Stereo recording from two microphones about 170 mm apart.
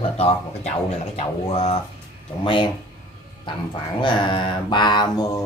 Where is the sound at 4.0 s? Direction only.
25° left (ahead or behind).